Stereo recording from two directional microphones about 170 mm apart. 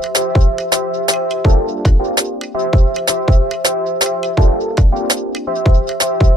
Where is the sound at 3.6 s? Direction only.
25° right (ahead or behind).